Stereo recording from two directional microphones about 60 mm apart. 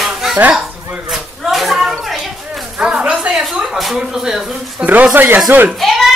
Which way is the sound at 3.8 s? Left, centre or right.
Centre.